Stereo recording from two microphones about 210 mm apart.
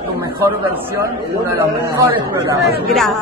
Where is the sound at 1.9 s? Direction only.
15° right (ahead or behind).